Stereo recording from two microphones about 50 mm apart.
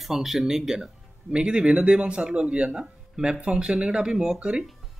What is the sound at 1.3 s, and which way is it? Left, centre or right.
Speech, centre.